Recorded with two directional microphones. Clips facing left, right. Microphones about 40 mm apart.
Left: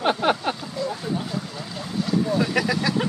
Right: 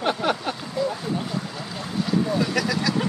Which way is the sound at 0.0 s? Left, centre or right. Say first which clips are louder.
Left 2 dB; left.